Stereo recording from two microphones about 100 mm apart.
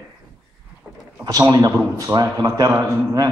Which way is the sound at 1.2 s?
40° right (ahead or behind).